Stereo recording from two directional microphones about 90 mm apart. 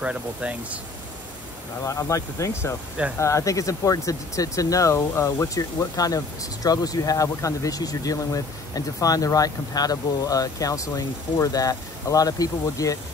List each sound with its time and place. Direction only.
0.0 s speech: 15° right (ahead or behind)
1.8 s speech: 35° left (ahead or behind)